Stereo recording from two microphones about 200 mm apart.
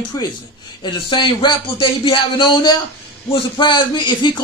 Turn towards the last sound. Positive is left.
turn(degrees=20)  # may be behind; listen again after turning